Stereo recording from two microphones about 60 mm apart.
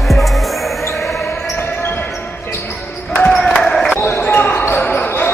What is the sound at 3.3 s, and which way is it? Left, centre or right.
Crowd, centre.